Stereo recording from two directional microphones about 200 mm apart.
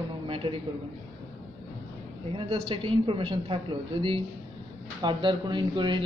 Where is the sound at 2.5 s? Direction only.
30° right (ahead or behind).